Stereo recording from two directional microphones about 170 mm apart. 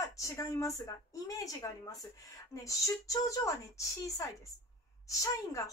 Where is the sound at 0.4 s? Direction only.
20° left (ahead or behind).